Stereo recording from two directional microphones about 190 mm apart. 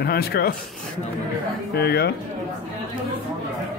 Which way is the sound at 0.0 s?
55° left (ahead or behind).